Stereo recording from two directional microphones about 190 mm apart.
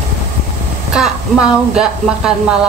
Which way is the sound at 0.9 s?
5° right (ahead or behind).